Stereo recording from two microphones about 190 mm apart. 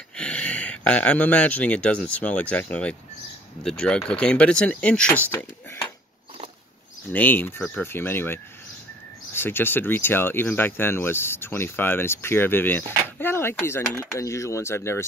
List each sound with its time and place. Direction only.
0.1 s speech: 5° left (ahead or behind)
7.1 s speech: 10° left (ahead or behind)